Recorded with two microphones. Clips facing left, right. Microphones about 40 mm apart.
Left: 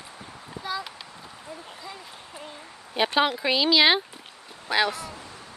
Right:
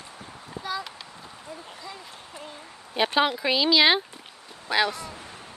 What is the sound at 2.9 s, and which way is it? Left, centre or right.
Speech, centre.